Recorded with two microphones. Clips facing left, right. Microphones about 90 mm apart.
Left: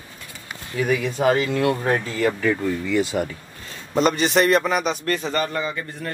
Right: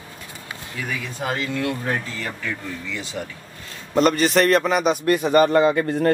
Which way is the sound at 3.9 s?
Centre (ahead or behind).